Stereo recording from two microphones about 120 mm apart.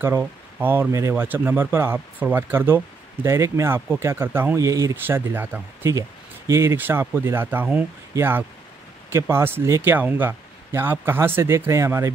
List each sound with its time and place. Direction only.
0.0 s speech: 20° right (ahead or behind)